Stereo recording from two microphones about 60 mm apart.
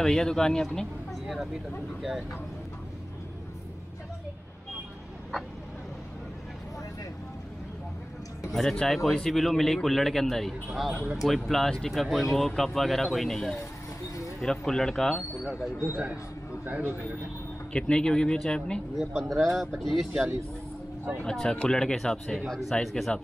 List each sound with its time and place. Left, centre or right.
0.0 s speech: centre
1.2 s speech: centre
8.5 s a man's voice: centre
14.4 s speech: centre
15.4 s a man's voice: centre
15.9 s speech: right
17.7 s speech: centre
18.9 s a man's voice: centre
21.3 s speech: centre